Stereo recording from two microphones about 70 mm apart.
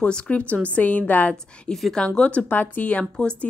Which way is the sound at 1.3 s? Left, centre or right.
Centre.